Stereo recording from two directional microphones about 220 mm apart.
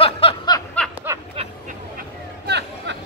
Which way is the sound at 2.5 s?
50° right (ahead or behind).